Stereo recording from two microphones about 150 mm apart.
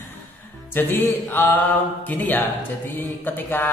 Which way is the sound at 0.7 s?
15° left (ahead or behind).